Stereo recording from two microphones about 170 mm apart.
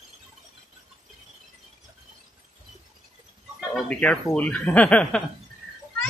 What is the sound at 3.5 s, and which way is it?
Speech, 5° left (ahead or behind).